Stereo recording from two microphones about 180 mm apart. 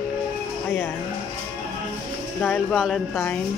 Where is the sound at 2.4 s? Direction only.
5° left (ahead or behind).